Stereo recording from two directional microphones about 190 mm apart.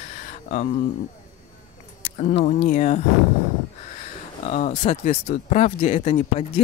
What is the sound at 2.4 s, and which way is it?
Speech, 40° left (ahead or behind).